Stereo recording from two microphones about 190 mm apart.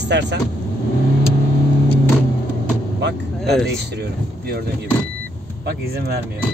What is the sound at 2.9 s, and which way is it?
Vehicle, 65° right (ahead or behind).